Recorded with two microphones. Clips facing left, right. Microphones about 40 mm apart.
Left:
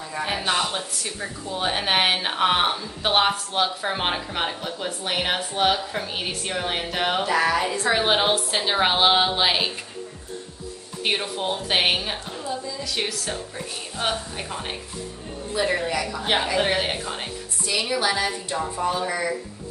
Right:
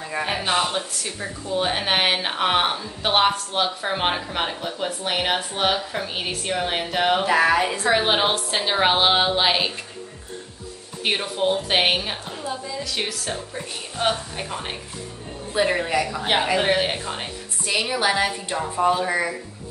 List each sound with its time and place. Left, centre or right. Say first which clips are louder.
0.2 s a woman's voice: right 1 dB; centre
7.2 s a woman's voice: right 3 dB; right
7.8 s speech: right 1 dB; centre
11.1 s a woman's voice: right 3 dB; centre
15.5 s a woman's voice: right 2 dB; right
16.5 s a woman's voice: right 2 dB; centre
17.6 s a woman's voice: right 2 dB; right